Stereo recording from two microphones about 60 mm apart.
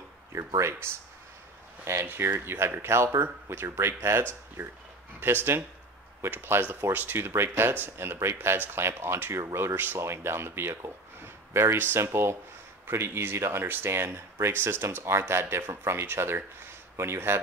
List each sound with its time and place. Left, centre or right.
0.3 s speech: right
1.9 s speech: right
4.6 s speech: right
9.8 s speech: right